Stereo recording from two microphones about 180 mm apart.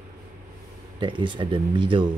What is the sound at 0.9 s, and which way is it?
Speech, 25° right (ahead or behind).